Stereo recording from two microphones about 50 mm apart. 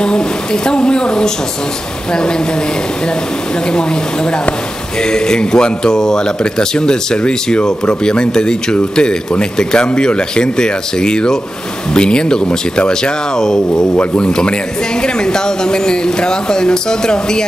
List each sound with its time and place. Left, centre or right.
0.0 s speech: centre
5.1 s speech: centre
13.9 s speech: left